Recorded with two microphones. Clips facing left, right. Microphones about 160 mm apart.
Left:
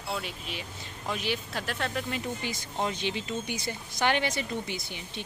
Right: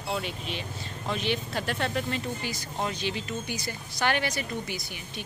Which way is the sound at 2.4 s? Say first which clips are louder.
Even; 20° left (ahead or behind).